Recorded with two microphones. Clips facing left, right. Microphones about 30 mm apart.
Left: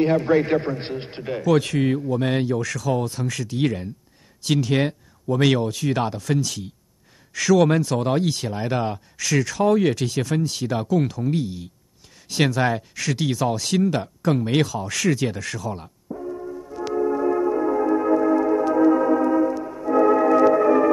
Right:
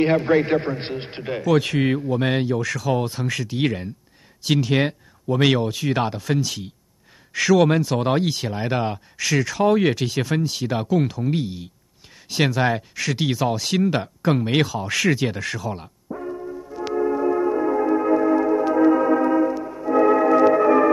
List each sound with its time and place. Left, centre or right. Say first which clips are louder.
0.0 s a man's voice: right 1 dB; right
1.4 s speech: even; centre
1.7 s a man's voice: right 1 dB; right
2.3 s a man's voice: right 1 dB; centre
16.3 s music: even; centre